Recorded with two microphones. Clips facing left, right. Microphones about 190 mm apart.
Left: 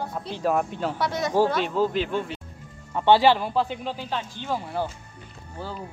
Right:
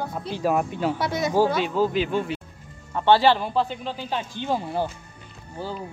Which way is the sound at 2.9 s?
15° left (ahead or behind).